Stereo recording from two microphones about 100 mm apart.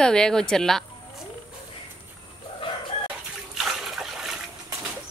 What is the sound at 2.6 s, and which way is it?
Chicken, 60° left (ahead or behind).